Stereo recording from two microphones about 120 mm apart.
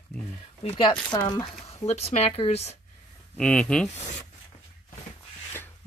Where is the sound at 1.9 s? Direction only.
60° left (ahead or behind).